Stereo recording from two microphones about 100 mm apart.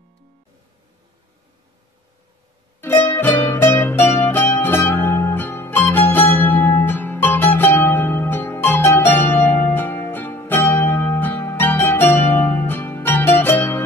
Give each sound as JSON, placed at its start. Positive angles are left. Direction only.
{"t": 2.8, "sound": "music", "side_deg": 20}